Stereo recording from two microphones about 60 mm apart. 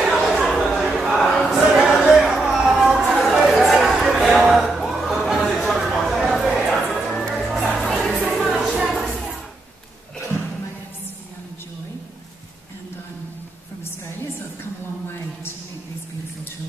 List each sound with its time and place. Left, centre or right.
0.1 s chatter: centre
0.7 s a sound: centre
2.0 s chatter: centre
6.9 s music: centre
8.7 s music: centre